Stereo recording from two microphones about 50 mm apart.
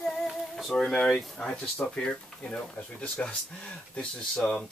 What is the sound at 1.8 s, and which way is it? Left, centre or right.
Speech, centre.